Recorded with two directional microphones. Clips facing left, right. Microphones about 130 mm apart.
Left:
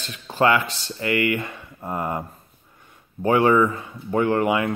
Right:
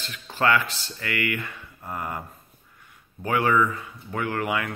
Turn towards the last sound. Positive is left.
turn(degrees=25)  # may be behind; listen again after turning